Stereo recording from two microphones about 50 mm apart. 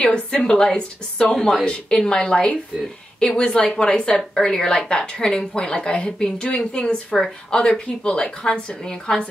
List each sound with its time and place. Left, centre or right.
0.0 s a woman's voice: left